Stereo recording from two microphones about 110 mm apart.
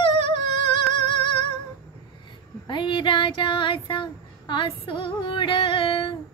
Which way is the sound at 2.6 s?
45° left (ahead or behind).